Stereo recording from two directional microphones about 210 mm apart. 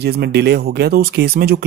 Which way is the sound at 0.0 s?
50° right (ahead or behind).